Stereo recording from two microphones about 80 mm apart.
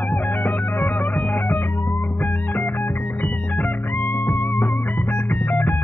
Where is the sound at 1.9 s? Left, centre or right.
Left.